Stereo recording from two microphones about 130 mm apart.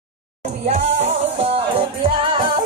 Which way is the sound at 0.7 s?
55° right (ahead or behind).